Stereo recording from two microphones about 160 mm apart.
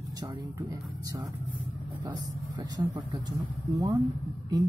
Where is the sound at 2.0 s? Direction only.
25° right (ahead or behind).